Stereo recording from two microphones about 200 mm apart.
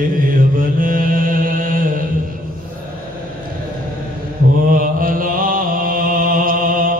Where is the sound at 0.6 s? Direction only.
45° right (ahead or behind).